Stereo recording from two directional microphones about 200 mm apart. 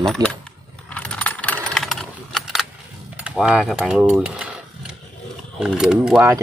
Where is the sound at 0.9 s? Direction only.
5° left (ahead or behind).